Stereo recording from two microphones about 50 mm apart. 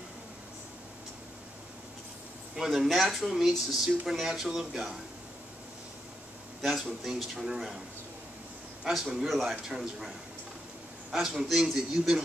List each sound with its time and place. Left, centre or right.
2.5 s a man's voice: centre
6.6 s speech: centre
9.2 s a man's voice: centre